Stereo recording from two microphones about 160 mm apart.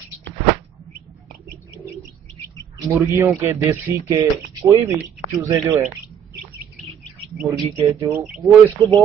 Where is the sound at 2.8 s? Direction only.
15° right (ahead or behind).